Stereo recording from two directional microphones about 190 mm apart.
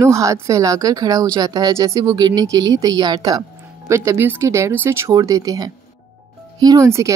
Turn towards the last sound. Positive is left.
turn(degrees=-15)  # may be behind; listen again after turning